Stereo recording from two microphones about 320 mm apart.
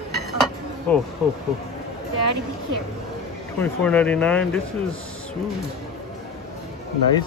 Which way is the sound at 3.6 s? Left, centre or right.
Centre.